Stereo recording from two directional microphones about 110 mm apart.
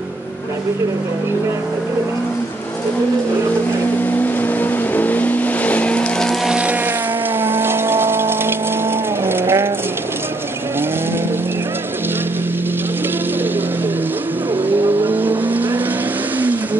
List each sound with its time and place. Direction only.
4.2 s vehicle: 15° left (ahead or behind)
6.5 s motorboat: 10° right (ahead or behind)
7.3 s a sound: 20° right (ahead or behind)
9.2 s horse: 20° right (ahead or behind)
15.0 s vehicle: 15° right (ahead or behind)